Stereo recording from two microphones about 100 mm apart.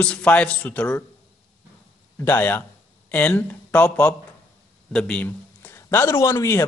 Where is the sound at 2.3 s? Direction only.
20° left (ahead or behind).